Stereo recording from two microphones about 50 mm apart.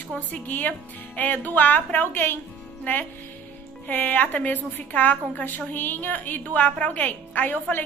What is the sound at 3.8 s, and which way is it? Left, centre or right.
Speech, left.